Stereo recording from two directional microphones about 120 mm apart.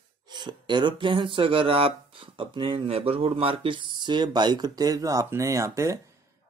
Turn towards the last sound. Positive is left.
turn(degrees=-25)  # may be behind; listen again after turning